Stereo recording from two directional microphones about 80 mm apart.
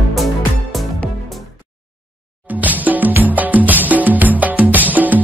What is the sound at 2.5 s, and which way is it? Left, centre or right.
Music, right.